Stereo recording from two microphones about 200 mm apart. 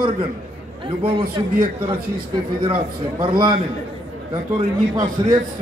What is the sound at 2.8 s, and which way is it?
Speech, 25° right (ahead or behind).